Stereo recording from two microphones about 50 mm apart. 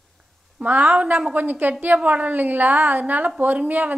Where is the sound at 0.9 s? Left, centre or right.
Right.